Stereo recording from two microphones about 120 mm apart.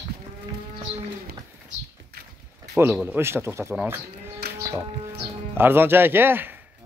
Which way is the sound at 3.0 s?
20° right (ahead or behind).